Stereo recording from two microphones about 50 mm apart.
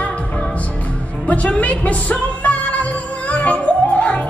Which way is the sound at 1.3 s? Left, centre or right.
Left.